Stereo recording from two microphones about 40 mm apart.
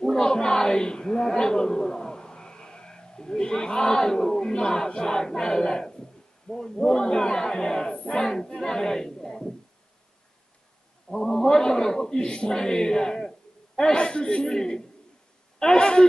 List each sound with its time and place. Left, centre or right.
0.0 s a man's voice: centre
11.1 s a man's voice: centre